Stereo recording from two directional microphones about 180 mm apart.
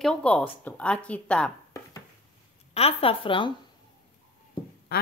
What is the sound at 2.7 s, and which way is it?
Speech, 30° left (ahead or behind).